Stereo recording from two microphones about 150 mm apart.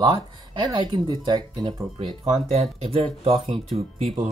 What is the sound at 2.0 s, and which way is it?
Speech, 45° right (ahead or behind).